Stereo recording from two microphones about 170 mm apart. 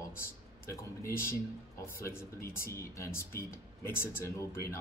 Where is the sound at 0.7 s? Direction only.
15° left (ahead or behind).